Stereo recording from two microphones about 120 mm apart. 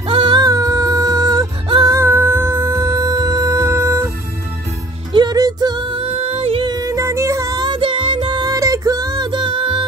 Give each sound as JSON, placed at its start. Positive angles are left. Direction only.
{"t": 0.1, "sound": "music", "side_deg": -40}
{"t": 2.0, "sound": "music", "side_deg": -20}
{"t": 5.1, "sound": "music", "side_deg": -35}
{"t": 6.6, "sound": "music", "side_deg": -30}